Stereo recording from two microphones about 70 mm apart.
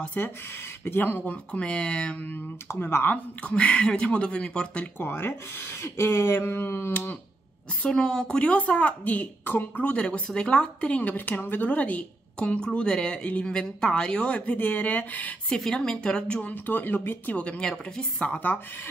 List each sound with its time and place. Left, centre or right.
0.2 s a woman's voice: left
2.7 s speech: left; by 4.8 s centre
4.9 s speech: left
7.8 s a woman's voice: centre
15.5 s speech: centre
16.6 s a woman's voice: left
17.4 s speech: centre